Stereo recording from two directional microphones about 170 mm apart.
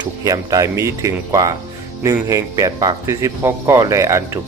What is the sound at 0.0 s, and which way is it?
Speech, 20° right (ahead or behind).